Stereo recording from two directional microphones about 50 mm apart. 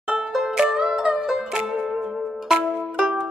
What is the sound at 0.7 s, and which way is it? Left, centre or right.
Music, centre.